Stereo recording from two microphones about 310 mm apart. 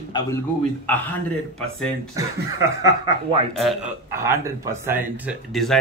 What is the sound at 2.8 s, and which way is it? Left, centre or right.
Speech, centre.